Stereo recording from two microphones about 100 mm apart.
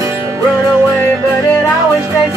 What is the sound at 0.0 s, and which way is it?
Music, 30° right (ahead or behind).